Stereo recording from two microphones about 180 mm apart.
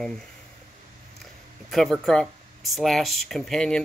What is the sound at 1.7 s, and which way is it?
Speech, centre (ahead or behind).